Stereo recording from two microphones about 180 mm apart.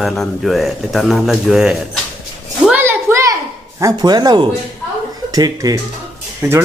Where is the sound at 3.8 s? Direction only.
20° right (ahead or behind).